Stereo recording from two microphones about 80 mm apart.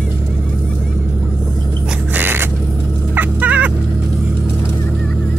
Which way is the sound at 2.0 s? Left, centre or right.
Right.